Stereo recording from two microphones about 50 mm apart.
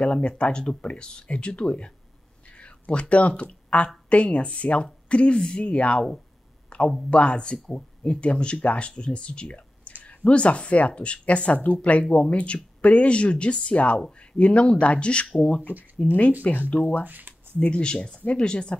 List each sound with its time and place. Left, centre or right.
0.0 s speech: left
6.7 s a sound: left
7.1 s speech: left
16.0 s speech: left
17.0 s speech: right
17.6 s speech: left